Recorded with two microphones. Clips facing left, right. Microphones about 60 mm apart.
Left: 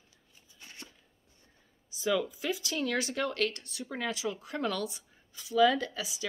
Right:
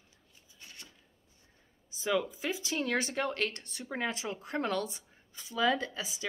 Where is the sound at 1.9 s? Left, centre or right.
Right.